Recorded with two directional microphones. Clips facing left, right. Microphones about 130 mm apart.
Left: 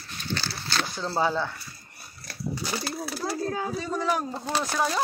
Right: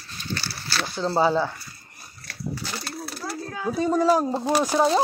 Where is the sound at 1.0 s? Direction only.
20° right (ahead or behind).